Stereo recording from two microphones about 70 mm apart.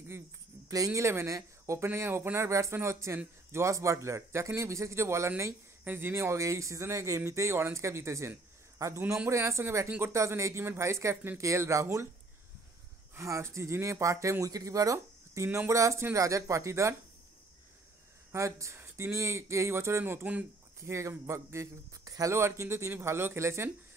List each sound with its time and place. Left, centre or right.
0.7 s speech: right
1.9 s speech: right
9.8 s speech: right
10.1 s speech: right
13.1 s speech: right
15.4 s speech: right
18.3 s speech: right